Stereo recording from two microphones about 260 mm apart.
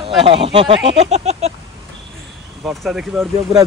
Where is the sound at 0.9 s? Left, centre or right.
Right.